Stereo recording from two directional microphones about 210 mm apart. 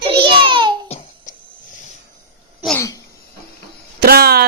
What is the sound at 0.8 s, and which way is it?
Babbling, 30° left (ahead or behind).